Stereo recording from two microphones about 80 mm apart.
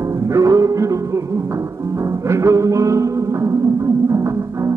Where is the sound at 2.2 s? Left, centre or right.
Right.